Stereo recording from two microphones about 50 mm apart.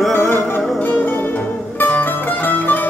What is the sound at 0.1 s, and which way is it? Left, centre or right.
Music, left.